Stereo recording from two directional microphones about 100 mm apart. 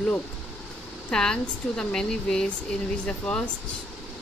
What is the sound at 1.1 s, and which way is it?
Speech, 5° left (ahead or behind).